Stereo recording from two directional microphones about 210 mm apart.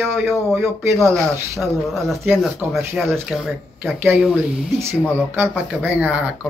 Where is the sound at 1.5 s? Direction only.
Centre (ahead or behind).